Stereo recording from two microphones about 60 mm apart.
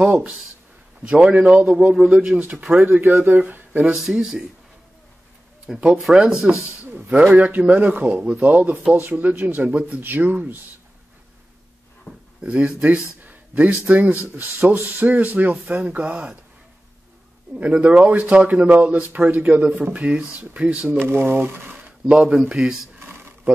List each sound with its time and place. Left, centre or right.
0.0 s speech: right
2.8 s speech: right
5.7 s speech: centre
6.9 s speech: right
9.7 s speech: right
12.4 s speech: right
17.6 s speech: right
21.1 s speech: right
21.7 s a sound: right
22.1 s speech: centre
22.9 s a sound: right